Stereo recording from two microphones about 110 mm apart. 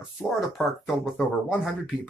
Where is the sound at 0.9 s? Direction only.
5° right (ahead or behind).